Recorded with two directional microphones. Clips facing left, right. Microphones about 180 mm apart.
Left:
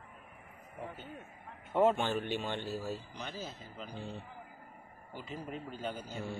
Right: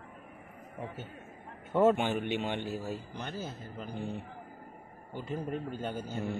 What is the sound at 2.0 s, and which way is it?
A man's voice, 15° right (ahead or behind).